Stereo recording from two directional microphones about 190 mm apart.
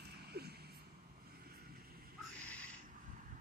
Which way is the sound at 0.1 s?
55° right (ahead or behind).